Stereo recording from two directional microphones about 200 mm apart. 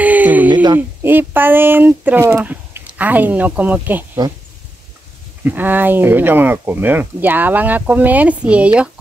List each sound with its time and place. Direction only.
0.0 s a sound: 10° right (ahead or behind)
0.7 s speech: 10° right (ahead or behind)
5.4 s speech: 10° right (ahead or behind)